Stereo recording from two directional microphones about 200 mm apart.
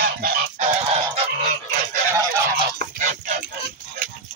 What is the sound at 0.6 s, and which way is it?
Fowl, 30° right (ahead or behind).